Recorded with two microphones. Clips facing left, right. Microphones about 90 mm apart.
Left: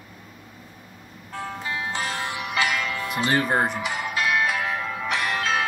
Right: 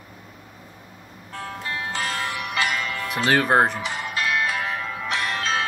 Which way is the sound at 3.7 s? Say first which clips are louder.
Left 1 dB; 5° left (ahead or behind).